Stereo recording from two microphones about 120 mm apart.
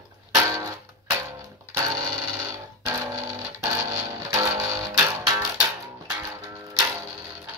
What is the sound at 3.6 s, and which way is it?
Music, 20° right (ahead or behind).